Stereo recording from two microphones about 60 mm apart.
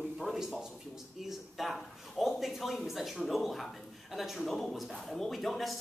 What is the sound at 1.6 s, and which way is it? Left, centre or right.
A man's voice, centre.